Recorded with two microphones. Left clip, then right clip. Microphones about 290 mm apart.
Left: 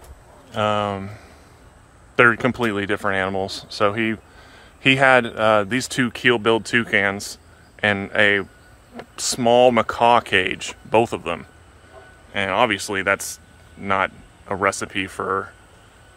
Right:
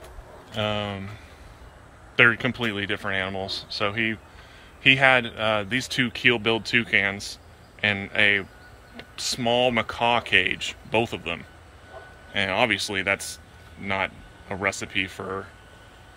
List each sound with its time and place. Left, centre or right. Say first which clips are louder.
0.5 s speech: left 7 dB; centre